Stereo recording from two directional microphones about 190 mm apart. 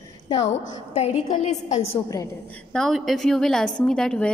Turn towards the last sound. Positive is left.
turn(degrees=5)  # may be behind; listen again after turning